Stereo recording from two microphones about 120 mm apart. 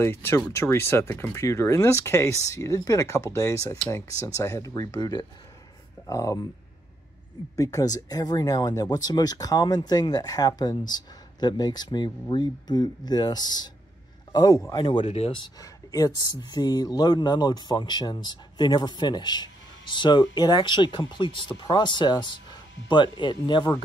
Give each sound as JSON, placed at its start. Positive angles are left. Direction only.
{"t": 0.0, "sound": "speech", "side_deg": 20}
{"t": 7.5, "sound": "speech", "side_deg": 30}
{"t": 15.0, "sound": "speech", "side_deg": 55}
{"t": 15.4, "sound": "speech", "side_deg": 30}